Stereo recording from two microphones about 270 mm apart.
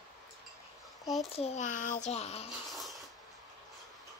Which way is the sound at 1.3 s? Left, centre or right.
Left.